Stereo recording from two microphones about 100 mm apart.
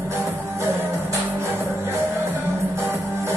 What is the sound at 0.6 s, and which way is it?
Music, 30° right (ahead or behind).